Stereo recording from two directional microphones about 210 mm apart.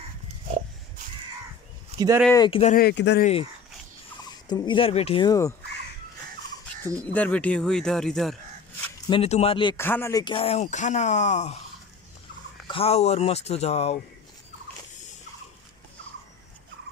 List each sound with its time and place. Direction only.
2.0 s speech: 15° right (ahead or behind)
2.3 s speech: 25° left (ahead or behind)
2.7 s speech: 50° left (ahead or behind)
3.2 s speech: 30° left (ahead or behind)
4.3 s speech: 20° left (ahead or behind)
7.2 s speech: 5° left (ahead or behind)
9.1 s speech: 30° left (ahead or behind)
9.8 s speech: 10° left (ahead or behind); by 11.5 s 35° left (ahead or behind)
12.6 s speech: 25° left (ahead or behind)